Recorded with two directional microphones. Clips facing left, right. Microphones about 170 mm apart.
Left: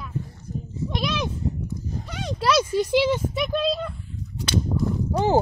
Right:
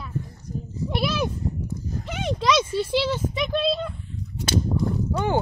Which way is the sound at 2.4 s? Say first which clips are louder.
Left 2 dB; 10° left (ahead or behind).